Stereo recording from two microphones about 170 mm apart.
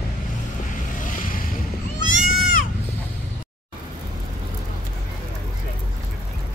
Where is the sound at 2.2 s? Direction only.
55° left (ahead or behind).